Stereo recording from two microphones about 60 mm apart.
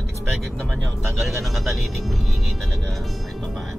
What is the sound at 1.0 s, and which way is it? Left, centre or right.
Speech, centre.